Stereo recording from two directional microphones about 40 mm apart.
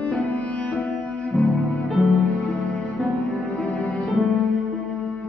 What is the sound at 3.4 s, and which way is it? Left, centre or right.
Music, left.